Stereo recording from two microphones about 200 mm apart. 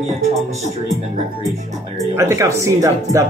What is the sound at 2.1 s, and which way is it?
A man's voice, 15° right (ahead or behind).